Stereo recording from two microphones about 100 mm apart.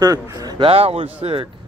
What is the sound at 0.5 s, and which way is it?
Speech, 75° right (ahead or behind).